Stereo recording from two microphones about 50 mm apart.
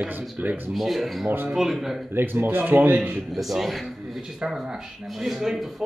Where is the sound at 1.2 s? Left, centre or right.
Right.